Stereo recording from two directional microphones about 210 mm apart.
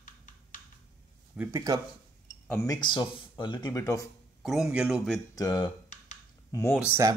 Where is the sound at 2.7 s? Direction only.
20° left (ahead or behind).